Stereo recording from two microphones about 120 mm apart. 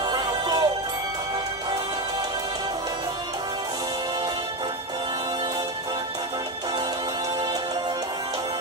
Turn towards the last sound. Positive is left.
turn(degrees=-35)  # may be behind; listen again after turning